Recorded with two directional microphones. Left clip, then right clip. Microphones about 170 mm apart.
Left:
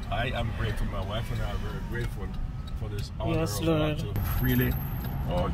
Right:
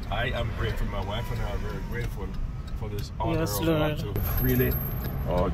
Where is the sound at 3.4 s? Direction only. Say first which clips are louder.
Right 1 dB; 10° left (ahead or behind).